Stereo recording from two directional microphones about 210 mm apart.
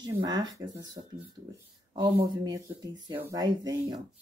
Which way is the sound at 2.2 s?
20° right (ahead or behind).